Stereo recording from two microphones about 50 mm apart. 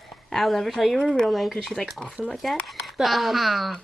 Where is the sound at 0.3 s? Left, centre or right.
Centre.